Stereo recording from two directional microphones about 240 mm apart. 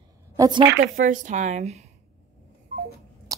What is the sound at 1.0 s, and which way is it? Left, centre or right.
Speech, right.